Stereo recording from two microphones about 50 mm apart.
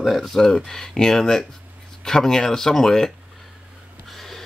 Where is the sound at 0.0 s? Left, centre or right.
Centre.